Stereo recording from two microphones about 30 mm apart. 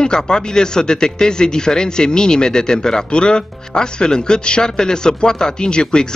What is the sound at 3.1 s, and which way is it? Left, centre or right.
Speech, left.